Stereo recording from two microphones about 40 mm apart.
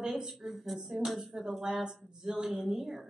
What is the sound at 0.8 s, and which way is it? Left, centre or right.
A woman's voice, centre.